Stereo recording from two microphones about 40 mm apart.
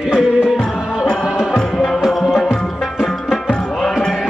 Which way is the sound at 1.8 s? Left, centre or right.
Centre.